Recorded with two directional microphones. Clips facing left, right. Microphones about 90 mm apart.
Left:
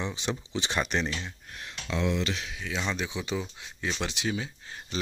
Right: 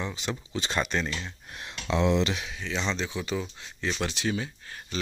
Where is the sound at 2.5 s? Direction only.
5° left (ahead or behind).